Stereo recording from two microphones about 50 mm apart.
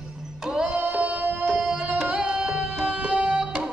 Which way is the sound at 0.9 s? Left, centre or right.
Right.